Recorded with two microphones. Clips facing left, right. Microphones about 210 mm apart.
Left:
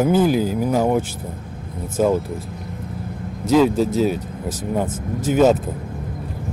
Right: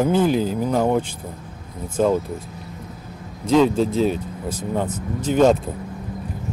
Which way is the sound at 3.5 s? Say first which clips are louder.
Left 1 dB; 5° left (ahead or behind).